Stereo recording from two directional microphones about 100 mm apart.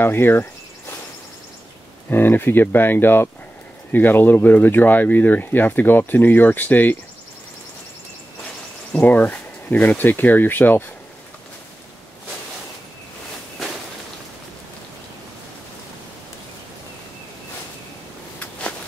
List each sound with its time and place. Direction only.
0.0 s cricket: 20° left (ahead or behind)
2.0 s speech: 20° left (ahead or behind)
8.9 s speech: 20° left (ahead or behind)